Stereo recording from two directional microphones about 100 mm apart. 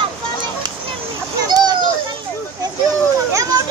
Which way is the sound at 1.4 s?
40° right (ahead or behind).